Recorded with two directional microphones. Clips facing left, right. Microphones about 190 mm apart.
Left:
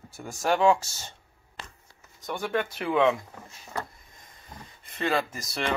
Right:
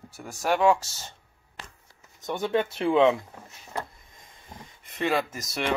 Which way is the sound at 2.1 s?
20° right (ahead or behind).